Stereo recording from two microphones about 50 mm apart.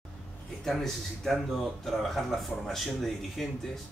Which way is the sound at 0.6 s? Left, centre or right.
Centre.